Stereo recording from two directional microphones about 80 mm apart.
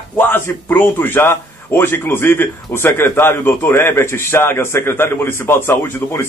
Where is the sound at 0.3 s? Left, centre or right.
Left.